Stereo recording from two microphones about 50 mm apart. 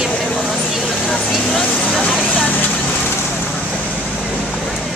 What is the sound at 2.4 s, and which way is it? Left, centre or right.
Vehicle, left.